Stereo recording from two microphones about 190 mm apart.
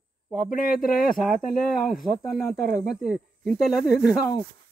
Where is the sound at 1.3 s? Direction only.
Centre (ahead or behind).